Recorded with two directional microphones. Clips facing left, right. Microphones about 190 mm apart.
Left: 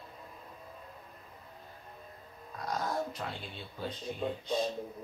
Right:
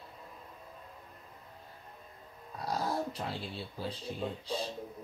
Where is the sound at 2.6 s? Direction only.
30° right (ahead or behind).